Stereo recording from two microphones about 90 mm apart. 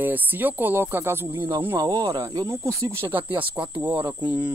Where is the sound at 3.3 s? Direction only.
15° right (ahead or behind).